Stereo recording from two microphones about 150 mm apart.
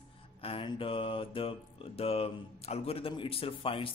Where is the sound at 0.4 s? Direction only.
35° left (ahead or behind).